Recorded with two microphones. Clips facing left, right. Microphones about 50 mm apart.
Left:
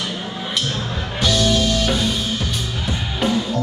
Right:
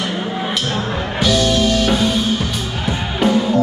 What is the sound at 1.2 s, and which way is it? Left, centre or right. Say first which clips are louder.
Music: right 3 dB; centre.